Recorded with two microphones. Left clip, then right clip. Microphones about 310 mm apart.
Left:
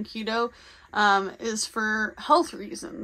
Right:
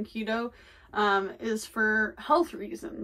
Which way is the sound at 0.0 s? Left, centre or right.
Centre.